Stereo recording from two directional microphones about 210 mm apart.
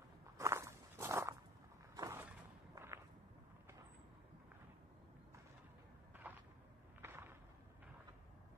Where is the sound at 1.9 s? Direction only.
15° right (ahead or behind).